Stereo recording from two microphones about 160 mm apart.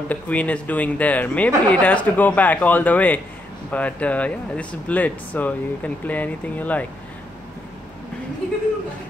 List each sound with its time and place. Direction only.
0.1 s speech: 10° left (ahead or behind)